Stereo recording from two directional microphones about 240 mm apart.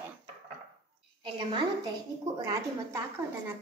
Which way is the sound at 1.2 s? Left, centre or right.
Right.